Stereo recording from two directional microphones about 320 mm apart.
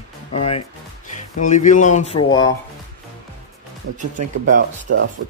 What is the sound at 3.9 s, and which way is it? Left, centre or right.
Speech, right.